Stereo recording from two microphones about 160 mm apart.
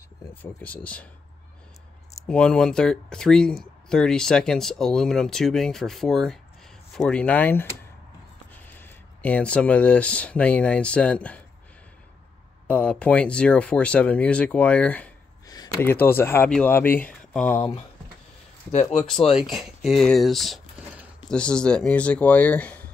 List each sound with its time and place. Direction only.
0.4 s speech: 10° left (ahead or behind)
2.2 s speech: 5° left (ahead or behind)
8.6 s speech: 10° left (ahead or behind)
12.6 s speech: 10° left (ahead or behind)
15.4 s a sound: 25° left (ahead or behind)
15.8 s speech: 15° left (ahead or behind)
18.7 s speech: 50° left (ahead or behind)
18.9 s speech: centre (ahead or behind)